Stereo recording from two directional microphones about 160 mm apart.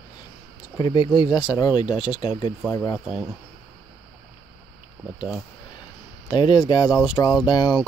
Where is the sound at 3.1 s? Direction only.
5° right (ahead or behind).